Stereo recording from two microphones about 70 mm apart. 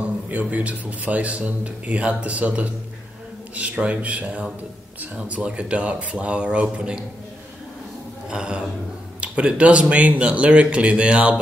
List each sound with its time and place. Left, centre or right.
0.0 s speech: right
8.3 s speech: centre